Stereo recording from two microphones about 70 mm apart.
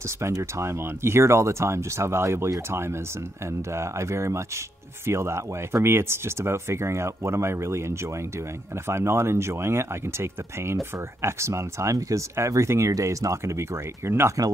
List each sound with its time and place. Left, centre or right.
0.2 s speech: right
3.7 s speech: right